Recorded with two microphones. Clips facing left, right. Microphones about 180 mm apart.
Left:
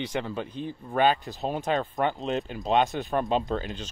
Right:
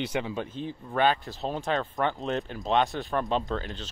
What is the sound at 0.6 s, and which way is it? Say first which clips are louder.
Speech: left 1 dB; 50° left (ahead or behind).